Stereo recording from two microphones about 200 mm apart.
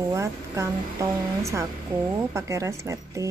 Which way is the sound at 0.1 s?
15° right (ahead or behind).